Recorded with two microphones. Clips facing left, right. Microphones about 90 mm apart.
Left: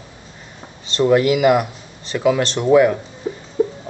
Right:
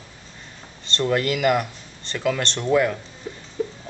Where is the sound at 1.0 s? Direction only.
10° left (ahead or behind).